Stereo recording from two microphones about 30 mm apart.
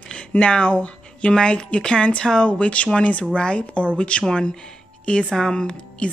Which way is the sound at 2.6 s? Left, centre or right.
Left.